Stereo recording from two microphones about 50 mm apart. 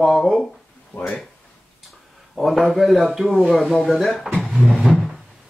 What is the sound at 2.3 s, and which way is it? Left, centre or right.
A man's voice, centre.